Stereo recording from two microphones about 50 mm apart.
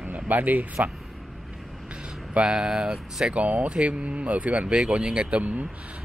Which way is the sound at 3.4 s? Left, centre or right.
Right.